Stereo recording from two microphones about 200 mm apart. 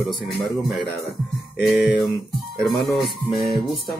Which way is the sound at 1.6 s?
5° right (ahead or behind).